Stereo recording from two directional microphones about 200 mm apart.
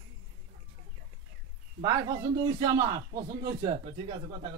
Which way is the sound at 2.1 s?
20° right (ahead or behind).